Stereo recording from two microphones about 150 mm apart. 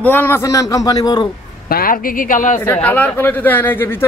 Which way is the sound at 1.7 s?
70° left (ahead or behind).